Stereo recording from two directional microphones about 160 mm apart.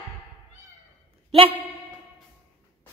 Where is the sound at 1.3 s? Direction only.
35° right (ahead or behind).